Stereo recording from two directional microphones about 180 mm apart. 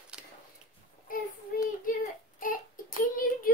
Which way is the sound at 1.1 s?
50° left (ahead or behind).